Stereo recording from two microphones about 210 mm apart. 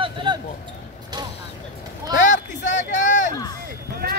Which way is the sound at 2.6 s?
35° left (ahead or behind).